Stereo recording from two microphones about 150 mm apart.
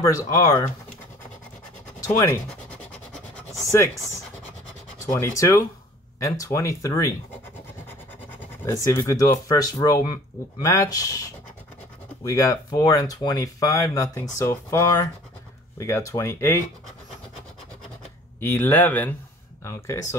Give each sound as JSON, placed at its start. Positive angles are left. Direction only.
{"t": 0.0, "sound": "speech", "side_deg": 20}
{"t": 2.0, "sound": "scratch", "side_deg": 20}
{"t": 3.6, "sound": "speech", "side_deg": 20}
{"t": 4.9, "sound": "speech", "side_deg": 20}
{"t": 8.6, "sound": "speech", "side_deg": 20}
{"t": 12.3, "sound": "speech", "side_deg": 20}
{"t": 18.4, "sound": "speech", "side_deg": 15}